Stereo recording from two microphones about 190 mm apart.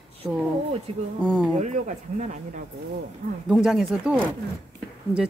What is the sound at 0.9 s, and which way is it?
Speech, 30° right (ahead or behind).